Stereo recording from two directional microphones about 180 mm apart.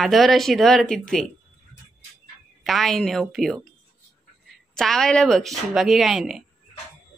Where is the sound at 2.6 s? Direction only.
Centre (ahead or behind).